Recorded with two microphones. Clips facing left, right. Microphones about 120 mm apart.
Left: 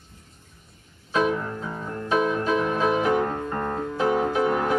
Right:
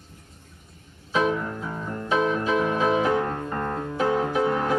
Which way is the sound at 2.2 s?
10° left (ahead or behind).